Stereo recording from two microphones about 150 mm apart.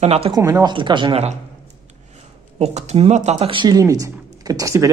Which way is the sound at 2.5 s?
45° right (ahead or behind).